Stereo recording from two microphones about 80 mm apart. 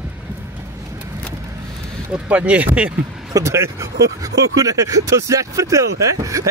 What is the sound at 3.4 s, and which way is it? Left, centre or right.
Speech, right.